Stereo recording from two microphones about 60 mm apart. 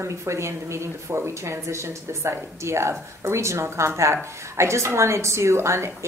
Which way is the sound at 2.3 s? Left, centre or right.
Right.